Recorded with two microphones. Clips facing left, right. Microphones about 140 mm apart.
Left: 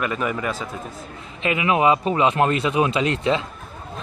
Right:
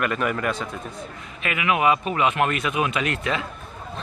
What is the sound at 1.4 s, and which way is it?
Speech, 25° left (ahead or behind).